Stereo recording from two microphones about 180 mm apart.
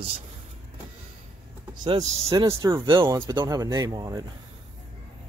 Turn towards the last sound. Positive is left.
turn(degrees=-20)  # may be behind; listen again after turning